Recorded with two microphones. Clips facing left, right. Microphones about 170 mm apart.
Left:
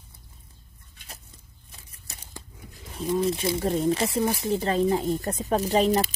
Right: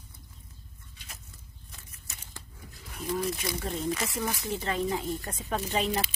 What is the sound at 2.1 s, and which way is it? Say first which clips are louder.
Tearing: left 4 dB; 35° left (ahead or behind).